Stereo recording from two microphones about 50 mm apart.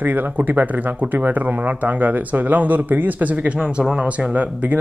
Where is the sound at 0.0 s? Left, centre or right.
Right.